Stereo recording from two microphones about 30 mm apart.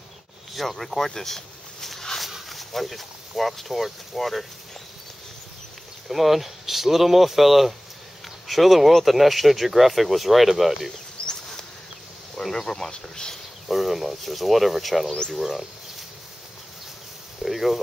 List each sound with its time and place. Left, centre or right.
0.5 s a sound: centre
2.5 s speech: centre
6.0 s speech: centre
12.5 s speech: centre
13.7 s speech: centre
17.4 s speech: centre